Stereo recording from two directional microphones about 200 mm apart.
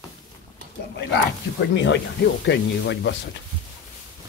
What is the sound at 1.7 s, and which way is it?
Speech, 60° left (ahead or behind).